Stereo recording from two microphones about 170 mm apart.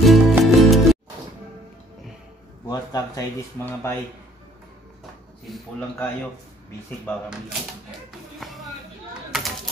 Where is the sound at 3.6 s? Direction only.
15° left (ahead or behind).